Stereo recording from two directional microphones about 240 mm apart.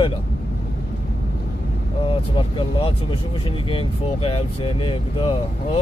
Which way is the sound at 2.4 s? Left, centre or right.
Left.